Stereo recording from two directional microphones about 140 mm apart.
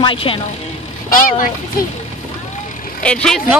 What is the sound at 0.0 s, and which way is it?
Speech, 40° left (ahead or behind).